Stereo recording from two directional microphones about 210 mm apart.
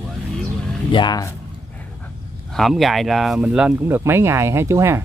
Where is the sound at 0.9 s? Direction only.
20° left (ahead or behind).